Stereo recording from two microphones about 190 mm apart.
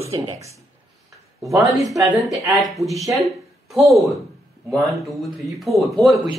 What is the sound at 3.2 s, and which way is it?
Speech, centre (ahead or behind).